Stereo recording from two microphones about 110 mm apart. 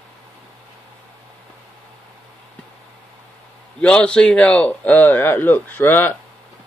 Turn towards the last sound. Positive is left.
turn(degrees=20)  # may be behind; listen again after turning